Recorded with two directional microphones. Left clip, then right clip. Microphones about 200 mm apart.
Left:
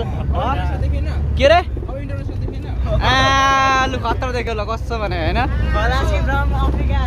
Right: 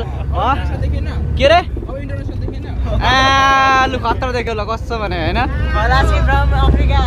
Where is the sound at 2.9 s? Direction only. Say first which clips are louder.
Right 3 dB; centre (ahead or behind).